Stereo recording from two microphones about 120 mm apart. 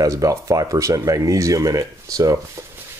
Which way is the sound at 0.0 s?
25° right (ahead or behind).